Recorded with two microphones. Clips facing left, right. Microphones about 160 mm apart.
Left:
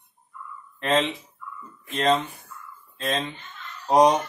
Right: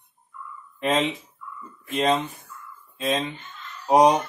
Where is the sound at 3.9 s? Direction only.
10° right (ahead or behind).